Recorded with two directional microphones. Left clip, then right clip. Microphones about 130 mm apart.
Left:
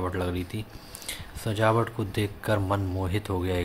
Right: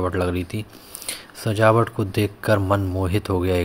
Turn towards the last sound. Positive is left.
turn(degrees=-40)  # may be behind; listen again after turning